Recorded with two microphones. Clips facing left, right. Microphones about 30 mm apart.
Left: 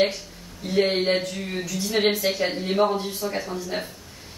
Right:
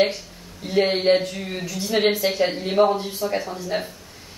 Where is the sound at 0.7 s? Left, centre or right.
Centre.